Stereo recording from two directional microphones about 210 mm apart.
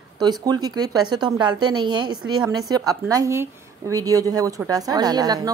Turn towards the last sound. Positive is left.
turn(degrees=-20)  # may be behind; listen again after turning